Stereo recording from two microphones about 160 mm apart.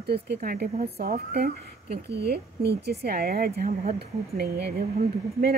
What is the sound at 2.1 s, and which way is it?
A woman's voice, 90° right.